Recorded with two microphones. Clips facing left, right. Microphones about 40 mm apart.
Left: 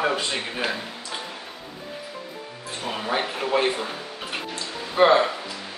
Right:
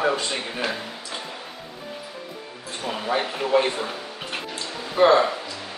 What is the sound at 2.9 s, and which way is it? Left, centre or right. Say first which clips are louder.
Speech: right 1 dB; centre.